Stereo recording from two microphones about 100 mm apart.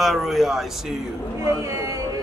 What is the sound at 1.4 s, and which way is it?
Speech, 30° right (ahead or behind).